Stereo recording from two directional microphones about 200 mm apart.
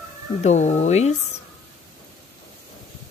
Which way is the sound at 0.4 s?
35° left (ahead or behind).